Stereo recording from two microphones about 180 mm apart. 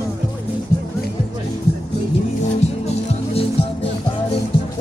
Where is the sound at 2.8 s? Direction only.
35° left (ahead or behind).